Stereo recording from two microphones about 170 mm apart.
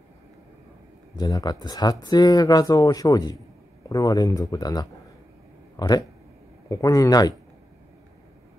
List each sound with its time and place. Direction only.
1.1 s speech: 25° left (ahead or behind)